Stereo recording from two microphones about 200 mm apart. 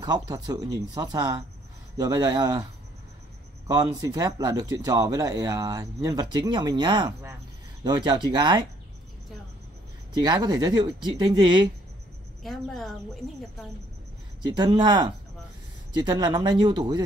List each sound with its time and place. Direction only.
0.0 s speech: 20° right (ahead or behind)
3.6 s speech: 20° right (ahead or behind)
10.1 s speech: 20° right (ahead or behind)
12.4 s a woman's voice: centre (ahead or behind)
14.4 s speech: 20° right (ahead or behind)